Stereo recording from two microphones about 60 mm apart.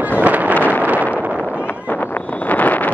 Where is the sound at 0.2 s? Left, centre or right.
Right.